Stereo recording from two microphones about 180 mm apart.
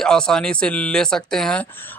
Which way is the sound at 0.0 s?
5° left (ahead or behind).